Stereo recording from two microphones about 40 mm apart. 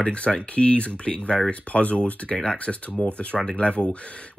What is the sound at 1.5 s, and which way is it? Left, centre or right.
Speech, left.